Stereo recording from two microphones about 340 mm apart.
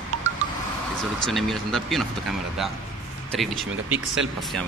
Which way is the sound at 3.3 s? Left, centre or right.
Centre.